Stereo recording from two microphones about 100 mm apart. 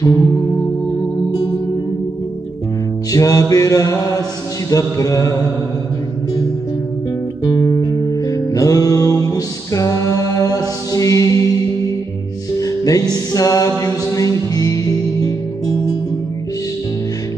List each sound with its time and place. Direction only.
0.0 s music: 35° left (ahead or behind)
3.1 s music: 35° left (ahead or behind)
3.5 s mantra: 35° left (ahead or behind)
7.4 s music: 40° left (ahead or behind)
12.5 s music: 35° left (ahead or behind)